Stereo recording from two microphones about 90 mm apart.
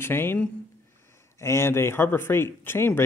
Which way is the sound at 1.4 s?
30° left (ahead or behind).